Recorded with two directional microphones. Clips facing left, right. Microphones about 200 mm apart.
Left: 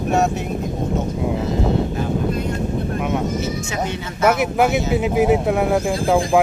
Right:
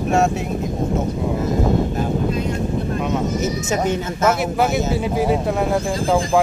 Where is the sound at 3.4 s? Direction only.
45° right (ahead or behind).